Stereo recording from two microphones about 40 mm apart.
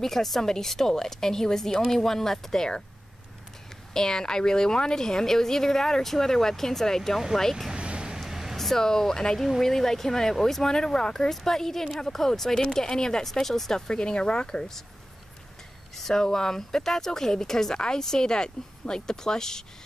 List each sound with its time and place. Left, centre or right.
0.0 s a woman's voice: centre
3.9 s a woman's voice: centre
7.7 s vehicle: right
8.3 s a sound: centre
8.5 s a woman's voice: centre
16.0 s a woman's voice: centre